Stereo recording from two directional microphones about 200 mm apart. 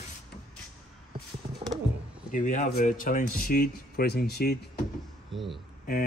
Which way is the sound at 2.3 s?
40° left (ahead or behind).